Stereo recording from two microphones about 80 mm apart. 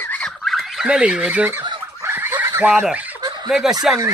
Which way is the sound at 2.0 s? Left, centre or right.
Right.